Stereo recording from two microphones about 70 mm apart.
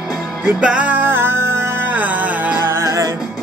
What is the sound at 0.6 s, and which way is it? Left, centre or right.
Music, centre.